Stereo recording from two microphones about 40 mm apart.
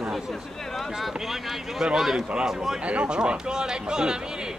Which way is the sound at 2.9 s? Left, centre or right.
Right.